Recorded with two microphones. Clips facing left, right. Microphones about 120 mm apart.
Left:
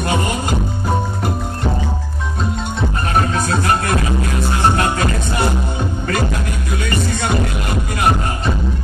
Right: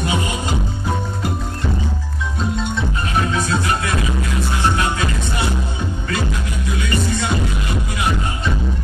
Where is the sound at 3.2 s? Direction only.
45° left (ahead or behind).